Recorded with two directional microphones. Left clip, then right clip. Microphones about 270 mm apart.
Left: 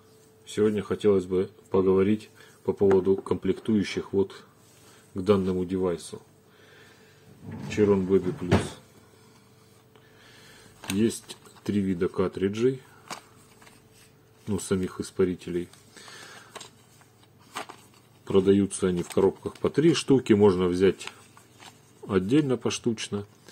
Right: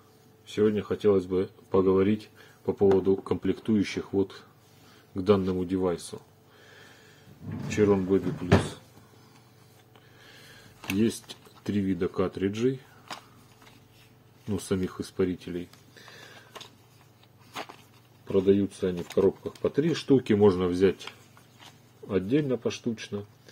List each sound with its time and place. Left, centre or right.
0.5 s speech: centre
7.7 s speech: centre
10.2 s a sound: centre
14.5 s speech: centre
18.2 s a man's voice: left
22.0 s a man's voice: left